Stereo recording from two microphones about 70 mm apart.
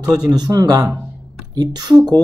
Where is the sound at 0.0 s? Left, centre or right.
Right.